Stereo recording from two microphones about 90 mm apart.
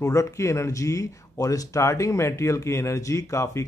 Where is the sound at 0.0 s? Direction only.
35° left (ahead or behind).